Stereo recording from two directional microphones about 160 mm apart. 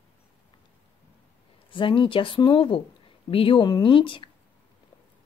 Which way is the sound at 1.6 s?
30° left (ahead or behind).